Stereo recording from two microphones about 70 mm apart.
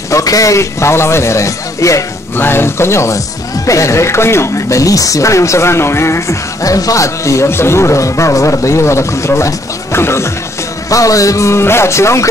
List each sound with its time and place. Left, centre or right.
0.1 s a man's voice: left
2.3 s speech: left
6.6 s speech: left
10.9 s speech: left